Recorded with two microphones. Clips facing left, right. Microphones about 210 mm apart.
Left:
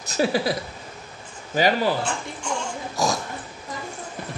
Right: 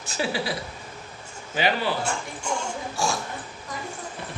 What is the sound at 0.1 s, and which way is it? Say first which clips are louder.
Speech: left 6 dB; 40° left (ahead or behind).